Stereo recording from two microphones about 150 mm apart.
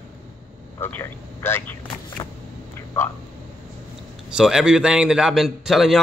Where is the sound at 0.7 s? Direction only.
15° left (ahead or behind).